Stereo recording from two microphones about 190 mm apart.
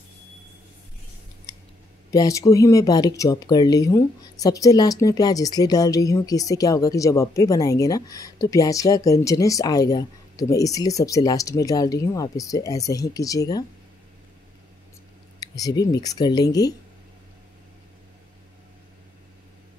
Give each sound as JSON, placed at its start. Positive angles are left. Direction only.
{"t": 2.0, "sound": "speech", "side_deg": 15}
{"t": 15.4, "sound": "speech", "side_deg": 20}